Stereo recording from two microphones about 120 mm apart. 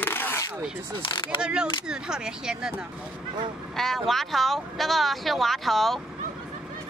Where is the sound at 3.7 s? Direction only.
Centre (ahead or behind).